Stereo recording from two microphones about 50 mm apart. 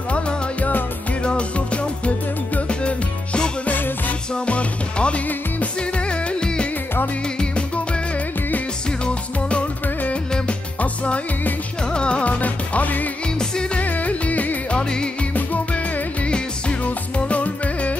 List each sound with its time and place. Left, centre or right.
0.1 s music: left
3.6 s music: left
4.5 s music: left
9.0 s music: left
14.7 s music: centre
15.3 s music: left
16.3 s music: left